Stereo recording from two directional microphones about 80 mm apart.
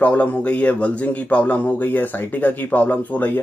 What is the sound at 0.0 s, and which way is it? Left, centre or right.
A man's voice, left.